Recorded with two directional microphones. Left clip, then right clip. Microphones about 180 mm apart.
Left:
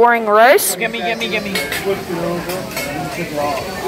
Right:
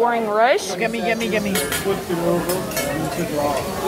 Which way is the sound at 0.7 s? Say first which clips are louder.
Left 2 dB; 45° right (ahead or behind).